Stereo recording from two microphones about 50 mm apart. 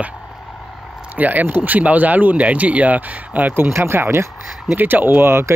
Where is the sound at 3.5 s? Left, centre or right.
Right.